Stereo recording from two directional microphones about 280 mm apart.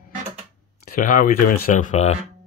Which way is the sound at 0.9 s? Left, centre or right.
Left.